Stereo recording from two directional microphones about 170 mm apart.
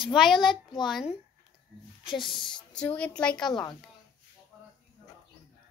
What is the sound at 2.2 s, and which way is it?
A child's voice, centre (ahead or behind).